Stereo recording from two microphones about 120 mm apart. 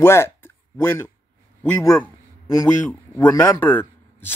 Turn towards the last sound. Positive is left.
turn(degrees=15)  # may be behind; listen again after turning